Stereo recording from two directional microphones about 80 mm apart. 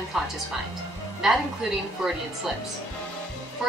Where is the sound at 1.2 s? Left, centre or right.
Centre.